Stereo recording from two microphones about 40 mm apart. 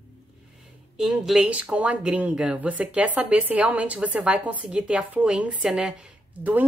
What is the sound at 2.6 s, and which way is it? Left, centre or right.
Speech, right.